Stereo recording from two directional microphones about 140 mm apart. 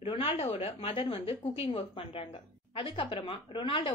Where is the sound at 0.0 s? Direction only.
45° left (ahead or behind).